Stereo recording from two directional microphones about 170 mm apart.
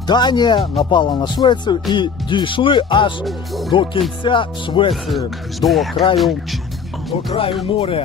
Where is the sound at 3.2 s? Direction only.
Centre (ahead or behind).